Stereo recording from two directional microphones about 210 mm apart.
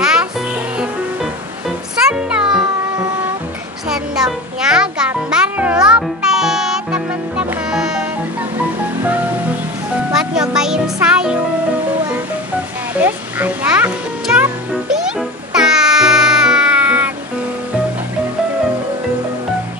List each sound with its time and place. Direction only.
0.0 s music: 5° right (ahead or behind)
2.0 s music: 5° right (ahead or behind)
3.9 s music: 5° right (ahead or behind)
10.1 s music: 5° right (ahead or behind)
13.0 s music: 10° right (ahead or behind)